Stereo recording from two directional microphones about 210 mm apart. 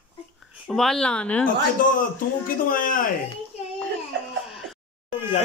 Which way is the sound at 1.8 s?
40° left (ahead or behind).